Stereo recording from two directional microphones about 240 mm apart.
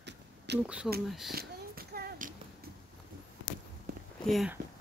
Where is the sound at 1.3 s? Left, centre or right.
Right.